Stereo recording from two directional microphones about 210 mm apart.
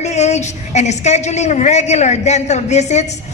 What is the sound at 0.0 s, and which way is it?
A woman's voice, 35° left (ahead or behind).